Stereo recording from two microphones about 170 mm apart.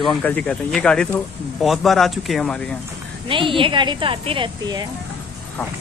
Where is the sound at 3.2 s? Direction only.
30° right (ahead or behind).